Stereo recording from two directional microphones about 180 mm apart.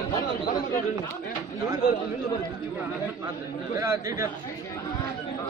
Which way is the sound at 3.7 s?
15° right (ahead or behind).